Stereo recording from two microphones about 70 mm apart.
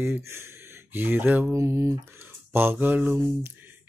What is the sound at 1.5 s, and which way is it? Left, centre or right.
Speech, right.